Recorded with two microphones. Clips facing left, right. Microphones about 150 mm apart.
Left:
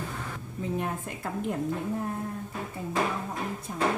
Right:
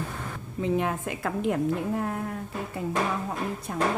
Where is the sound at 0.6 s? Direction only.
90° right.